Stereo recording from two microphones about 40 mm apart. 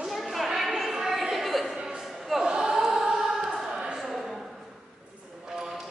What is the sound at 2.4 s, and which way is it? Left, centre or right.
Choir, centre.